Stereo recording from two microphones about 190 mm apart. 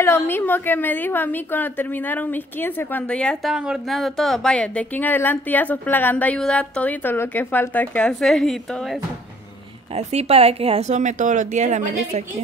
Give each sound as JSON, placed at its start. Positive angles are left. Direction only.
{"t": 0.0, "sound": "a woman's voice", "side_deg": 10}
{"t": 9.9, "sound": "speech", "side_deg": -35}